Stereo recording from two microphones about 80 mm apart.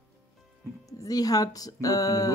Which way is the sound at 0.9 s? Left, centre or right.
Left.